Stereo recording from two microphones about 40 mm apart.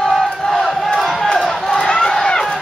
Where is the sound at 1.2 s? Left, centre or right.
Centre.